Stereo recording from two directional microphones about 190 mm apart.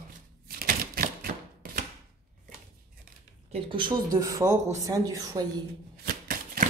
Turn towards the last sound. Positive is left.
turn(degrees=-50)  # may be behind; listen again after turning